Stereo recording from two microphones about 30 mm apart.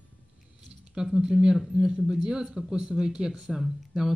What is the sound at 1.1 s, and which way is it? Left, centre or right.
Speech, centre.